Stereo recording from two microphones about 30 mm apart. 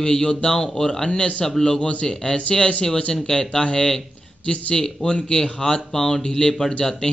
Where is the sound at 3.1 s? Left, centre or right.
Left.